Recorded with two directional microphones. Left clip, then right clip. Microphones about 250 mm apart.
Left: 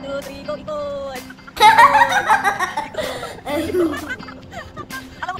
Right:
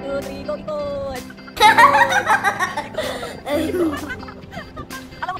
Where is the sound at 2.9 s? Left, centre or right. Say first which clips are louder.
Even; centre.